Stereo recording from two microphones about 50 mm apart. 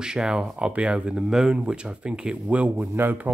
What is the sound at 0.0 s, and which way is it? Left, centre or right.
Speech, centre.